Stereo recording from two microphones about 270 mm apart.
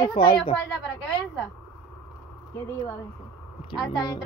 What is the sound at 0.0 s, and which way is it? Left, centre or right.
Speech, centre.